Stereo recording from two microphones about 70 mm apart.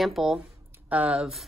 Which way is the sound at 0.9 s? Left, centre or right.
Centre.